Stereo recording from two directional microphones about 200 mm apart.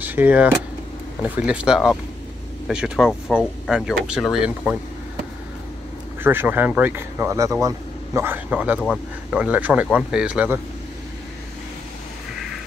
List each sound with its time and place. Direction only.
0.0 s speech: 10° right (ahead or behind)
6.2 s speech: 10° right (ahead or behind)